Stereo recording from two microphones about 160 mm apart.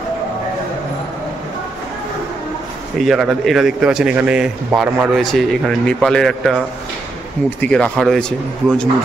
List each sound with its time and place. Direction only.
3.0 s a man's voice: 5° right (ahead or behind)